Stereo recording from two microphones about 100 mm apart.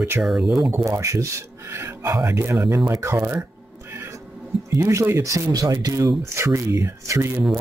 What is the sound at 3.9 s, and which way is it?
Music, 30° right (ahead or behind).